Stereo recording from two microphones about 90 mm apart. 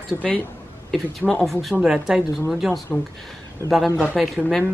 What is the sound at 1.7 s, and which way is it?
A woman's voice, 5° right (ahead or behind).